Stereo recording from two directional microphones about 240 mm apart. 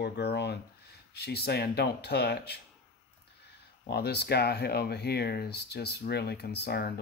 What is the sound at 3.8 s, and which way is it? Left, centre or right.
Speech, left.